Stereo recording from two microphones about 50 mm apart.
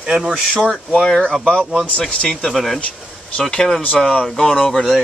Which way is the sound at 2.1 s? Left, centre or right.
Centre.